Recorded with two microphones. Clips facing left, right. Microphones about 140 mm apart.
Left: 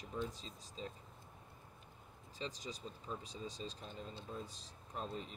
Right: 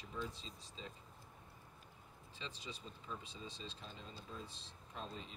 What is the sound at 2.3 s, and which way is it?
Speech, 40° left (ahead or behind).